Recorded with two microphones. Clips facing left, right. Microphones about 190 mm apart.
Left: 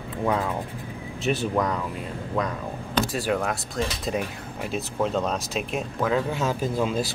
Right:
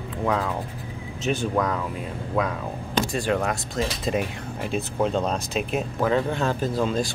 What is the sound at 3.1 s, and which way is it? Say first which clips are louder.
Speech: right 1 dB; centre (ahead or behind).